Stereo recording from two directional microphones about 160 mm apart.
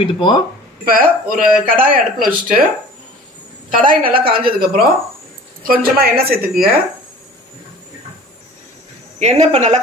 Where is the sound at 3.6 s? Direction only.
55° right (ahead or behind).